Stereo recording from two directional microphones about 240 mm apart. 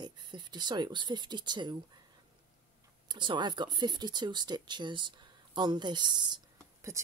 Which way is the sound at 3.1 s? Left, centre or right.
Centre.